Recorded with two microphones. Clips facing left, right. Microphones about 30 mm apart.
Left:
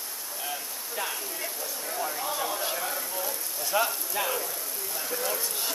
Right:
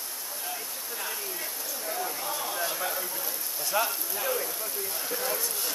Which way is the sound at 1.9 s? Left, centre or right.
Centre.